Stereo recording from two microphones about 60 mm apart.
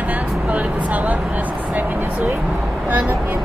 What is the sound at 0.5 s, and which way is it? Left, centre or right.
Vehicle, right.